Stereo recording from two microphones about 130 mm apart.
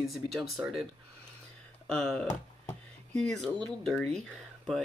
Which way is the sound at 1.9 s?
5° left (ahead or behind).